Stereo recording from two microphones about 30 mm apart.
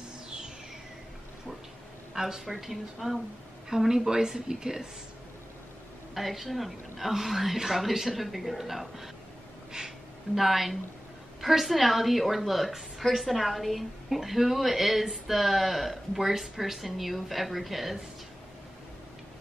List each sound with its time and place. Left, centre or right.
2.1 s speech: centre
2.4 s speech: centre
6.1 s speech: centre
9.7 s gasp: right
10.3 s speech: centre